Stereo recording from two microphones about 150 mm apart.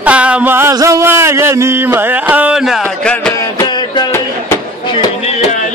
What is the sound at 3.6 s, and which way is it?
Music, 30° left (ahead or behind).